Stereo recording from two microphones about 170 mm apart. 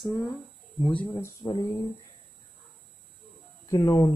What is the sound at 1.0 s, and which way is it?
Speech, 15° left (ahead or behind).